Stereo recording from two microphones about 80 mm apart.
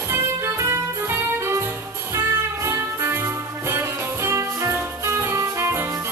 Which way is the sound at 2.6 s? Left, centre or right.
Right.